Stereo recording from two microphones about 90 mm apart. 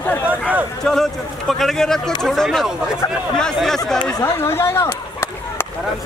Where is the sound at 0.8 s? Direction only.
5° left (ahead or behind).